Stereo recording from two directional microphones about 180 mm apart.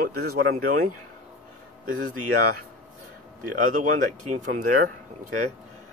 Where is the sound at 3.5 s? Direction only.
45° right (ahead or behind).